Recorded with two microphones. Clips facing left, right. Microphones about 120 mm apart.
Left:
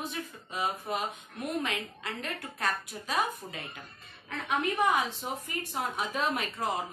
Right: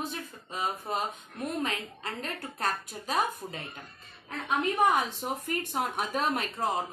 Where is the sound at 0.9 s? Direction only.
35° right (ahead or behind).